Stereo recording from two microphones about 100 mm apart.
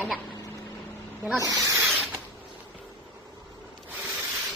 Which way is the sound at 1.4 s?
35° right (ahead or behind).